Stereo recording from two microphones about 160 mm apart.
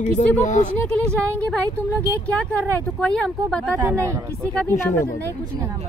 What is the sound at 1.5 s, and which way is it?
Speech, 10° left (ahead or behind).